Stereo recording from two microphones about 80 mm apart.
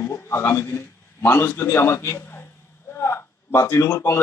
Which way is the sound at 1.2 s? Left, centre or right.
Left.